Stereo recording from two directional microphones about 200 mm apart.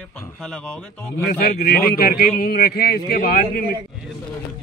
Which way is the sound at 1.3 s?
50° left (ahead or behind).